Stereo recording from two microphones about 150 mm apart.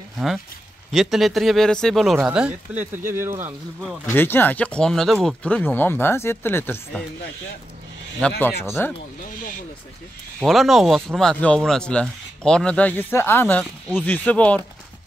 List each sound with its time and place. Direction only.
0.9 s speech: centre (ahead or behind); by 3.5 s 15° right (ahead or behind)
3.8 s speech: centre (ahead or behind)
4.1 s speech: 15° left (ahead or behind)
8.2 s speech: 15° left (ahead or behind)
10.4 s speech: centre (ahead or behind)